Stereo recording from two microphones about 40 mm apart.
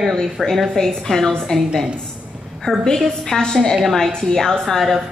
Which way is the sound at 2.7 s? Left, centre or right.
Centre.